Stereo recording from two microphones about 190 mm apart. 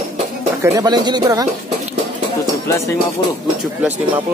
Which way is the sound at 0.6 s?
20° right (ahead or behind).